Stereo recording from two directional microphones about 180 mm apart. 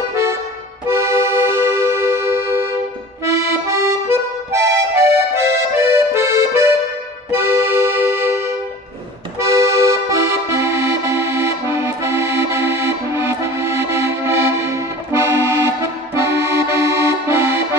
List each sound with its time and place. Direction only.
0.8 s accordion: 15° right (ahead or behind)